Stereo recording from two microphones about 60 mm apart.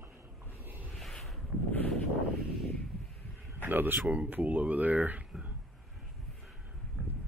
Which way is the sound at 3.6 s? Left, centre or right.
Right.